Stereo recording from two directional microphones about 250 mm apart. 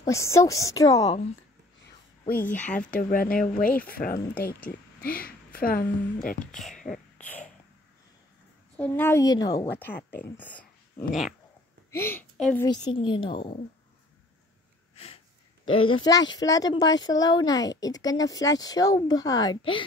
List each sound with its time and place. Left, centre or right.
0.0 s speech: centre
2.3 s speech: centre
2.8 s speech: left
6.4 s speech: centre
6.9 s beatboxing: centre
8.7 s speech: centre
15.6 s speech: left
16.0 s speech: centre